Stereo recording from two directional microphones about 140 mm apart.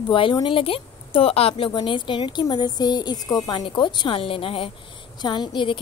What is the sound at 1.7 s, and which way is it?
Speech, 35° left (ahead or behind).